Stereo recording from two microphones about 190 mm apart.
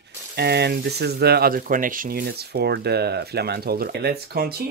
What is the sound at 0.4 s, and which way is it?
Speech, 60° right (ahead or behind).